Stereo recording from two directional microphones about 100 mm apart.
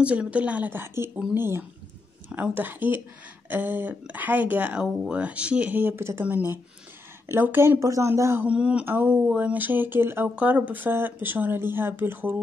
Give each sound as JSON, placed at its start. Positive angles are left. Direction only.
{"t": 0.0, "sound": "speech", "side_deg": -10}
{"t": 8.5, "sound": "speech", "side_deg": -10}